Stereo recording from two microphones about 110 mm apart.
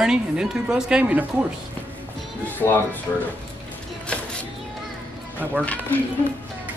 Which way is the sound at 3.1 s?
20° left (ahead or behind).